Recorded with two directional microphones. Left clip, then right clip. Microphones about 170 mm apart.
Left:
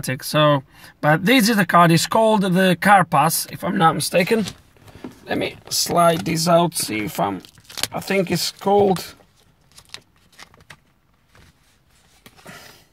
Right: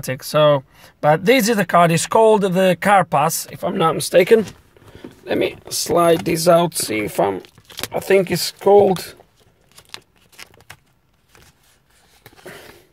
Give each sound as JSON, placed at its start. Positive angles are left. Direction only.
{"t": 0.0, "sound": "speech", "side_deg": 0}
{"t": 9.8, "sound": "tearing", "side_deg": -35}
{"t": 12.3, "sound": "a sound", "side_deg": -25}